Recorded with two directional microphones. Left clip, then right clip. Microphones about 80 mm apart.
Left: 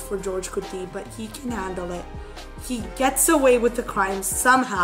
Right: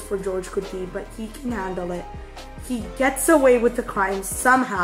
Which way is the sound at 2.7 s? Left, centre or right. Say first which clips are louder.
Right 1 dB; left.